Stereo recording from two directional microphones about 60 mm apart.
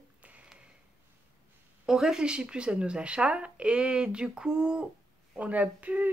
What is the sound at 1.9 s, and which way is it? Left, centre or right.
Speech, centre.